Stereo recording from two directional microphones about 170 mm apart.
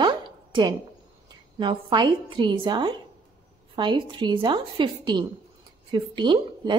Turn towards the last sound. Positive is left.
turn(degrees=-25)  # may be behind; listen again after turning